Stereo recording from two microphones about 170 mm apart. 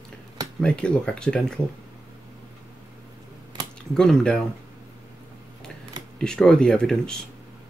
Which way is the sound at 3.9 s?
5° left (ahead or behind).